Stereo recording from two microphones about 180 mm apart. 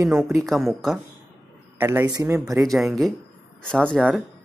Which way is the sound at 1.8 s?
10° right (ahead or behind).